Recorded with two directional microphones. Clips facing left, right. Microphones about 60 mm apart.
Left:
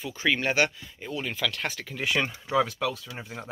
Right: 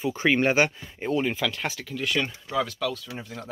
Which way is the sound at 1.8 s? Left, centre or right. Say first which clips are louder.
Even; centre.